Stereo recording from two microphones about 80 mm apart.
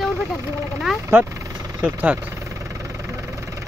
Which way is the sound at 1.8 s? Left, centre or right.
Centre.